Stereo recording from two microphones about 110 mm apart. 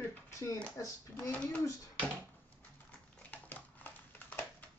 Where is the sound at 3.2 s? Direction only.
15° left (ahead or behind).